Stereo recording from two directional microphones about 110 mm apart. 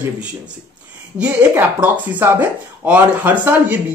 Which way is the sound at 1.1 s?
10° right (ahead or behind).